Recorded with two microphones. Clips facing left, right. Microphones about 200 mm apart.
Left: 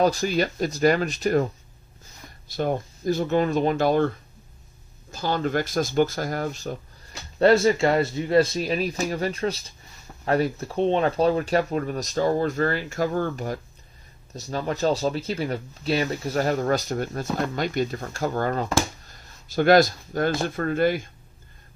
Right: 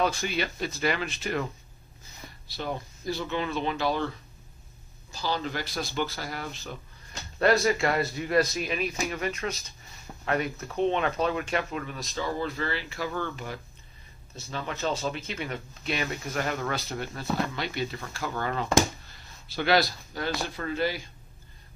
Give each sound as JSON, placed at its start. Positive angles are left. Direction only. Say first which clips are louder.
{"t": 0.0, "sound": "speech", "louder": "left 6 dB", "side_deg": 40}
{"t": 5.1, "sound": "speech", "louder": "left 7 dB", "side_deg": 50}
{"t": 7.3, "sound": "speech", "louder": "left 6 dB", "side_deg": 30}